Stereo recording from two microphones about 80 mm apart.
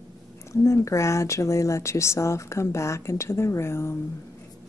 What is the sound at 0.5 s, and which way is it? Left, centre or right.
Speech, left.